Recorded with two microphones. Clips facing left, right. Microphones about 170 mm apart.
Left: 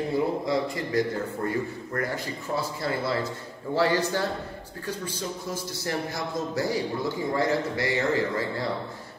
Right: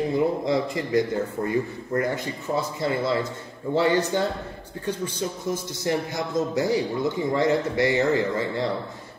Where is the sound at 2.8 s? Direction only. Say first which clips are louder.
Right 4 dB; 20° right (ahead or behind).